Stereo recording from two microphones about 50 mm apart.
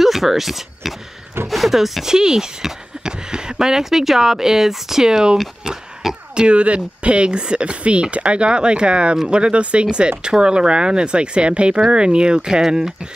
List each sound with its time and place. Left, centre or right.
0.0 s speech: centre
12.6 s speech: centre